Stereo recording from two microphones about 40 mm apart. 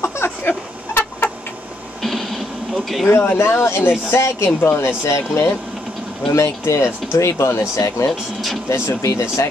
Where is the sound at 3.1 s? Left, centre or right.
Left.